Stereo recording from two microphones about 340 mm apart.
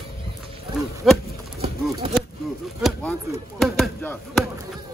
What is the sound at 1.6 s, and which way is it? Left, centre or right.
Clip-clop, centre.